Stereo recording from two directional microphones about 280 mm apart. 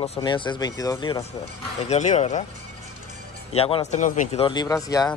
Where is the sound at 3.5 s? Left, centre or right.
Left.